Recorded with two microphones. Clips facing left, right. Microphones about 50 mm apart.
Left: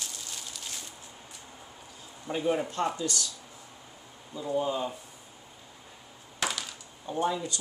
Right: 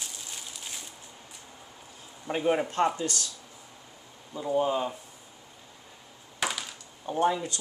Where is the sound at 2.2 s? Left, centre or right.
Right.